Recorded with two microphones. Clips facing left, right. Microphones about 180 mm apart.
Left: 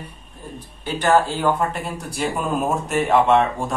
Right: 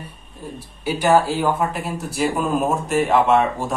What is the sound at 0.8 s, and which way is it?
Speech, 10° right (ahead or behind).